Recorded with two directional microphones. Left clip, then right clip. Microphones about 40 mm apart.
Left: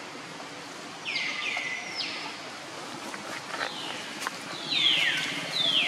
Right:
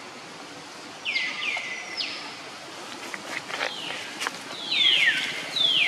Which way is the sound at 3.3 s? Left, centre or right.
Right.